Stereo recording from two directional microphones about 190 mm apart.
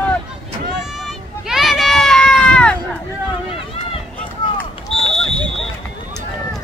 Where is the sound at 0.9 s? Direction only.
Centre (ahead or behind).